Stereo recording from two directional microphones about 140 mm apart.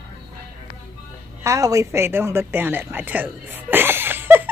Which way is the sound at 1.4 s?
25° right (ahead or behind).